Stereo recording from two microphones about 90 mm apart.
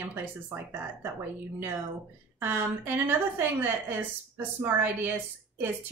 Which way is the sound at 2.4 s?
25° right (ahead or behind).